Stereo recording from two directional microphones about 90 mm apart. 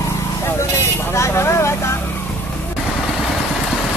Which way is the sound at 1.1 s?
30° left (ahead or behind).